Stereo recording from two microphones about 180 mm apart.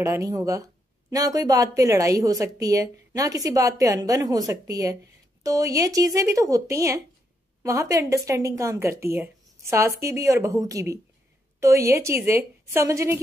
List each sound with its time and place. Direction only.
0.0 s a woman's voice: 15° right (ahead or behind)